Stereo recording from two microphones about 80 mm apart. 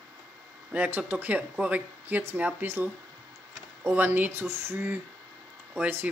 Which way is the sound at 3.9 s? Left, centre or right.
Right.